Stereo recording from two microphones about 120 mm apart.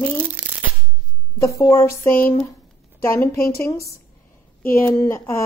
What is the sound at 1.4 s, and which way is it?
Speech, 25° left (ahead or behind).